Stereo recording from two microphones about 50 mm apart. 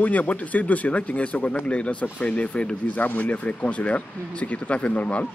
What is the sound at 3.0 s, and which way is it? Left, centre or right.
Speech, left.